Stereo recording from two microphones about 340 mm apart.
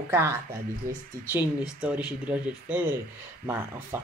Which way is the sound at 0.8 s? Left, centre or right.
Right.